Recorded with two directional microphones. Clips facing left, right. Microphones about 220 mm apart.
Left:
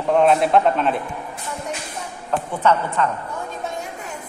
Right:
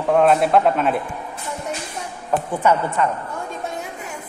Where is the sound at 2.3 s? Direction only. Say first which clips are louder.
Right 1 dB; 10° right (ahead or behind).